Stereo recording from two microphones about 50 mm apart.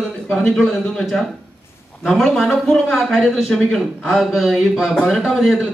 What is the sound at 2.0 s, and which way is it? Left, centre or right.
Speech, centre.